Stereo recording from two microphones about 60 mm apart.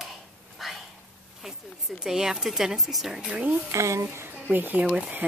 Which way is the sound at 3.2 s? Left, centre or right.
Right.